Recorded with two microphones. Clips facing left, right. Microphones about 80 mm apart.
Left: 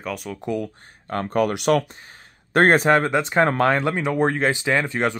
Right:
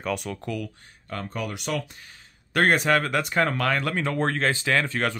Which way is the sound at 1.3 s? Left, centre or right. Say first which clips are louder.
Left 12 dB; left.